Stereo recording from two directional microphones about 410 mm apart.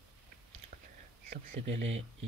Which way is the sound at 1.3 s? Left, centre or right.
Centre.